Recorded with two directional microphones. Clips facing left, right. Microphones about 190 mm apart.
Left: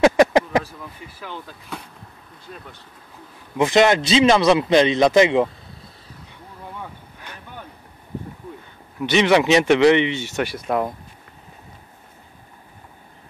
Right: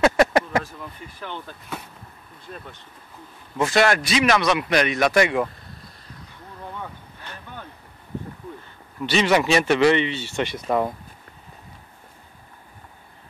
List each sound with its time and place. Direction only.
0.0 s a sound: 15° left (ahead or behind)
1.0 s speech: 5° left (ahead or behind)
3.5 s a man's voice: 20° left (ahead or behind)
6.7 s vehicle: 10° left (ahead or behind)
9.0 s speech: 15° left (ahead or behind)
10.3 s speech: 5° left (ahead or behind)